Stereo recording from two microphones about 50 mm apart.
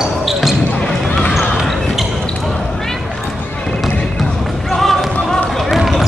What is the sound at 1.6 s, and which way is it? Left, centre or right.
Basketball bounce, centre.